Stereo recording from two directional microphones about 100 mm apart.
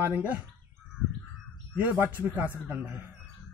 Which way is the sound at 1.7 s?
15° right (ahead or behind).